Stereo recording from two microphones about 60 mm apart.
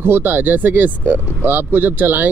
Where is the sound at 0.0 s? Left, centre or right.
Right.